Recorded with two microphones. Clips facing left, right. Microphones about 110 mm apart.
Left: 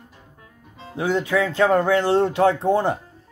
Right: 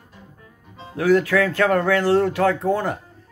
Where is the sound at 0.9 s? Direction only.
20° left (ahead or behind).